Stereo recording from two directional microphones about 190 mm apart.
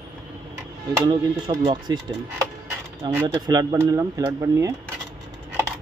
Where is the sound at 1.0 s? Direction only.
20° right (ahead or behind).